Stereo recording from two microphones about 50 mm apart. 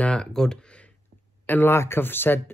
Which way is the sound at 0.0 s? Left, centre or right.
Centre.